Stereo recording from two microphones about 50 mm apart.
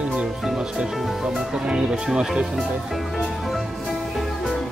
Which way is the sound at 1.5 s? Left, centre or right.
Centre.